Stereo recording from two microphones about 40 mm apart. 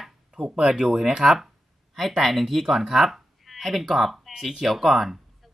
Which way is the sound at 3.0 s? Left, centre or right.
Centre.